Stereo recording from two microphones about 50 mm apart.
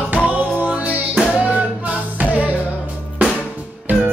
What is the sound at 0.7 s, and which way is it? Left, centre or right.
Music, right.